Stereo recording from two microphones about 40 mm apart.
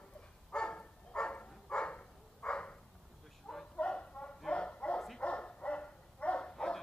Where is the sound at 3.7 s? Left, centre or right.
Left.